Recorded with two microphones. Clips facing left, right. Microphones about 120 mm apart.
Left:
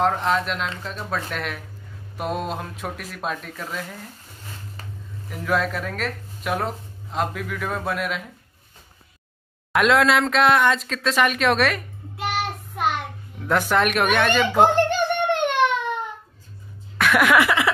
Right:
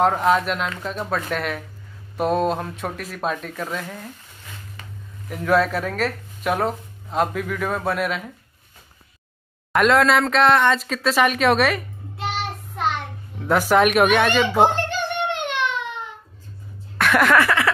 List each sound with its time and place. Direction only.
0.0 s speech: 5° right (ahead or behind)
5.3 s speech: centre (ahead or behind)
9.7 s speech: centre (ahead or behind)
13.4 s speech: 5° right (ahead or behind)
14.9 s a sound: 50° left (ahead or behind)
17.0 s a sound: 5° left (ahead or behind)